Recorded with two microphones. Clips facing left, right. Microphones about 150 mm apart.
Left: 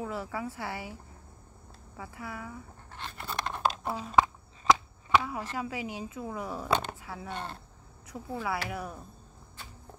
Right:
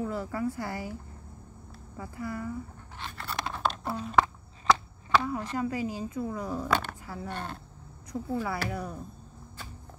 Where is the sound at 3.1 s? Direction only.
15° left (ahead or behind).